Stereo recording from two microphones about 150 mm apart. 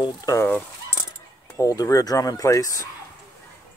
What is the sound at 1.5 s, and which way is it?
Speech, 25° left (ahead or behind).